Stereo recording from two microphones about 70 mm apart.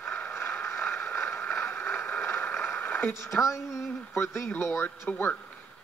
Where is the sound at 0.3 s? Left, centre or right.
Left.